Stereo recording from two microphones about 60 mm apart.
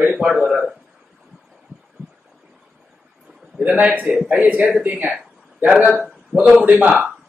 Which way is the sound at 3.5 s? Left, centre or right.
Right.